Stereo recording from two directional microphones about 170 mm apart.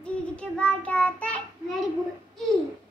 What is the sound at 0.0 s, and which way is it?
Child singing, 5° left (ahead or behind).